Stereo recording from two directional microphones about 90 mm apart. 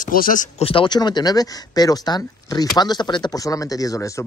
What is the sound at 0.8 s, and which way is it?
Speech, 55° left (ahead or behind).